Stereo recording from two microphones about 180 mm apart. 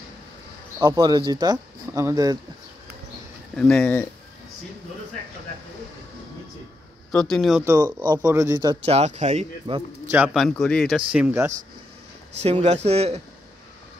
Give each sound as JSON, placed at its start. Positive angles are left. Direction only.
{"t": 0.7, "sound": "speech", "side_deg": -15}
{"t": 3.5, "sound": "speech", "side_deg": 5}
{"t": 7.1, "sound": "speech", "side_deg": 0}
{"t": 8.1, "sound": "speech", "side_deg": -20}
{"t": 8.8, "sound": "speech", "side_deg": -35}
{"t": 10.1, "sound": "speech", "side_deg": -5}
{"t": 12.4, "sound": "speech", "side_deg": -35}